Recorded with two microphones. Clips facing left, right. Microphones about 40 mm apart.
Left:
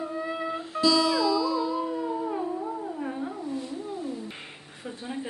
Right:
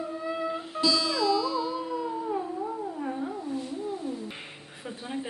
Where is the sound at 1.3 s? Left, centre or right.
Centre.